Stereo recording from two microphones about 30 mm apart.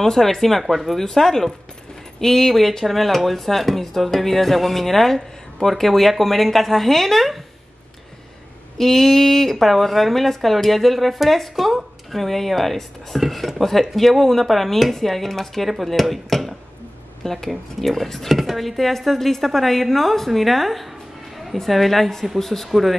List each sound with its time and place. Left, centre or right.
0.0 s speech: centre
0.9 s speech: centre
8.7 s speech: centre
17.2 s speech: centre
17.5 s speech: centre